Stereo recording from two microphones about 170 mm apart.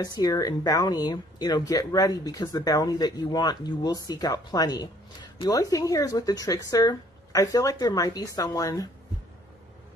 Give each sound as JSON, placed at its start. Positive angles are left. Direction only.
{"t": 0.0, "sound": "speech", "side_deg": 20}